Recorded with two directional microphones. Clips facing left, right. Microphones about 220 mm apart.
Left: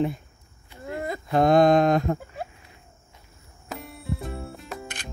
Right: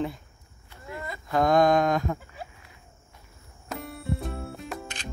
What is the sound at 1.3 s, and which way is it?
Mantra, 25° left (ahead or behind).